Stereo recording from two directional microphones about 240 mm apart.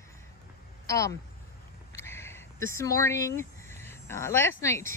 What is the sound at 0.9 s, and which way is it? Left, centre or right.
Speech, centre.